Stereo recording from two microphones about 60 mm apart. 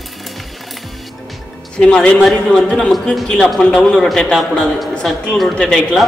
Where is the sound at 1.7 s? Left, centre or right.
Centre.